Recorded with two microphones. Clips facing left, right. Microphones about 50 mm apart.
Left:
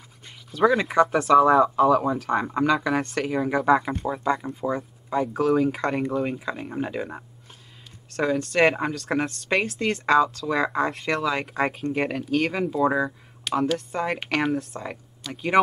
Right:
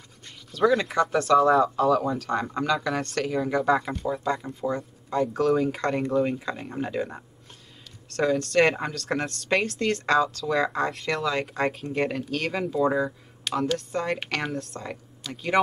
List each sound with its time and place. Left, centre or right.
0.5 s a woman's voice: centre